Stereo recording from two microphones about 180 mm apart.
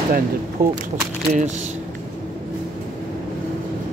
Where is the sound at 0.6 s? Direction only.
55° right (ahead or behind).